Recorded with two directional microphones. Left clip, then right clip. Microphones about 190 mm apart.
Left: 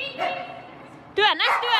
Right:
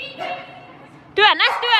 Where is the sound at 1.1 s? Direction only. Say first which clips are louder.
Right 5 dB; 10° left (ahead or behind).